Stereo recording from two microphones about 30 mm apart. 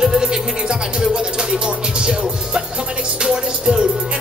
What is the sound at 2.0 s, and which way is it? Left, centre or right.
Music, right.